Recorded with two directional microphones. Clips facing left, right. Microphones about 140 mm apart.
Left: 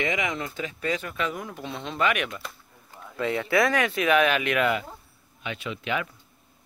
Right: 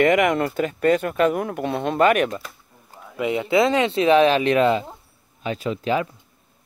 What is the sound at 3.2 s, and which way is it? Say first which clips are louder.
Speech: right 4 dB; 20° right (ahead or behind).